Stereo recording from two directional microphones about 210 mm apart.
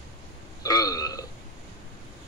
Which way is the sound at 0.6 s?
15° left (ahead or behind).